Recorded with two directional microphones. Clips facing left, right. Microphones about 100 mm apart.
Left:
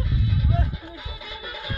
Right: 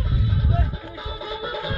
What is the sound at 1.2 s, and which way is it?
Music, 30° right (ahead or behind).